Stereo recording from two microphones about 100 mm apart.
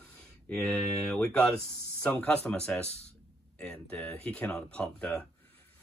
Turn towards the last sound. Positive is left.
turn(degrees=15)  # may be behind; listen again after turning